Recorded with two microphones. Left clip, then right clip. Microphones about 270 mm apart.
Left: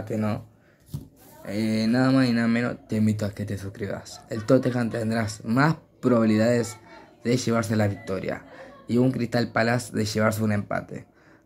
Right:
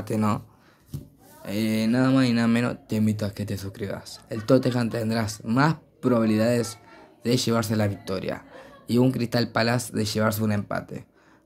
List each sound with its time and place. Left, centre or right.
0.1 s speech: centre
1.4 s speech: centre
3.0 s speech: centre